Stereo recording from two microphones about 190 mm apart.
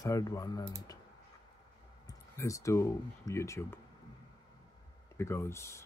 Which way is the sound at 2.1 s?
15° left (ahead or behind).